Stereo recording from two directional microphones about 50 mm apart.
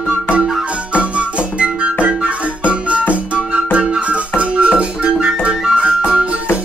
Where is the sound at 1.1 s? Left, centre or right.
Right.